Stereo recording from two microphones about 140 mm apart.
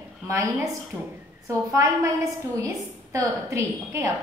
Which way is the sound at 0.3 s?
25° right (ahead or behind).